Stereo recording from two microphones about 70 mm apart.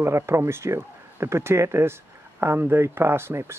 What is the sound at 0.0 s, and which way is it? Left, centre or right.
Speech, right.